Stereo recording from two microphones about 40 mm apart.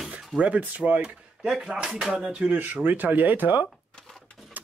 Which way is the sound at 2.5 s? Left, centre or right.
Right.